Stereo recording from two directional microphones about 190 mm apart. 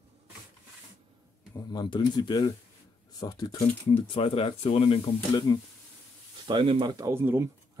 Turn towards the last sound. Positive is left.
turn(degrees=-15)  # may be behind; listen again after turning